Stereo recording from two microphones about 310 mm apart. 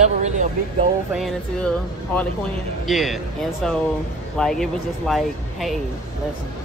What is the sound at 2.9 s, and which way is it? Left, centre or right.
Speech, centre.